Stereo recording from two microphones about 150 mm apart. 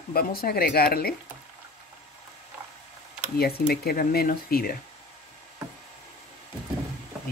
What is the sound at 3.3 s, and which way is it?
Speech, 90° left.